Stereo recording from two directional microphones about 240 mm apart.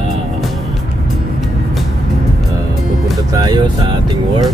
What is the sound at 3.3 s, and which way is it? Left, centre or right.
Speech, centre.